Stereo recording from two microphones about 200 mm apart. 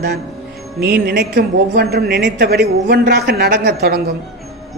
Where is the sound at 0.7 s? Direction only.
50° right (ahead or behind).